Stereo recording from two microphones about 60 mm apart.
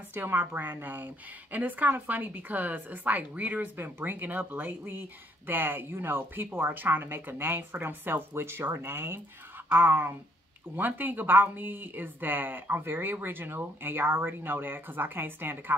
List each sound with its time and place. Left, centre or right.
0.1 s a woman's voice: right
3.7 s a woman's voice: right